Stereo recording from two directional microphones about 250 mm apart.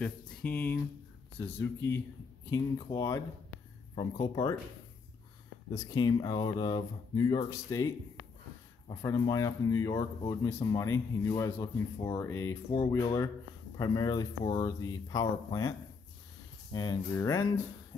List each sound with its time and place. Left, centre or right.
0.0 s speech: centre
5.9 s speech: centre
16.7 s speech: centre